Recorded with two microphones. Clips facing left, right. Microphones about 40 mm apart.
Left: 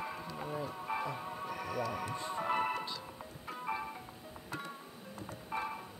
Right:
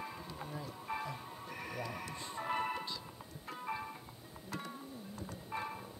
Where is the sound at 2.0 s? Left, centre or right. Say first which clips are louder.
Left 4 dB; centre.